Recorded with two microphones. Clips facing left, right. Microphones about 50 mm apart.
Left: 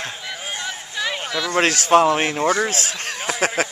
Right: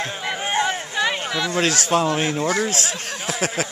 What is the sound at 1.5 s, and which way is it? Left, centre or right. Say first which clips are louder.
Speech: left 5 dB; left.